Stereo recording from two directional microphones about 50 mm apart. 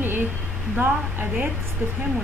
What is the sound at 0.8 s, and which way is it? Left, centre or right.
Speech, right.